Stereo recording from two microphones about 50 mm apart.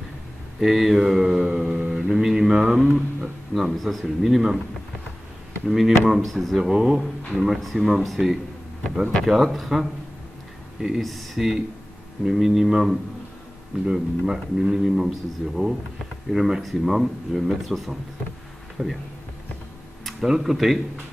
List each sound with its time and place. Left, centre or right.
0.6 s mantra: centre
3.5 s speech: centre
4.2 s mantra: centre
5.7 s speech: centre
6.7 s mantra: centre
7.3 s speech: centre
12.3 s mantra: centre
16.3 s speech: centre
18.8 s speech: right
20.1 s speech: centre